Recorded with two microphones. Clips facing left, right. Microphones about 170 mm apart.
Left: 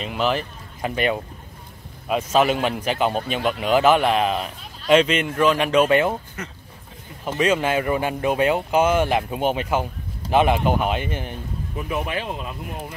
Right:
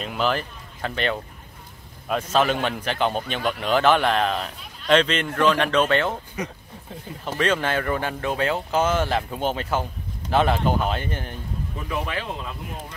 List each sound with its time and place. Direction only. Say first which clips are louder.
0.0 s a man's voice: left 1 dB; centre (ahead or behind)
6.4 s speech: right 4 dB; 10° right (ahead or behind)
7.2 s a man's voice: left 3 dB; 10° left (ahead or behind)
11.9 s speech: left 2 dB; 20° left (ahead or behind)